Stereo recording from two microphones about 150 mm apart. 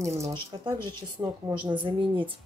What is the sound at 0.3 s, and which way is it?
A woman's voice, 30° right (ahead or behind).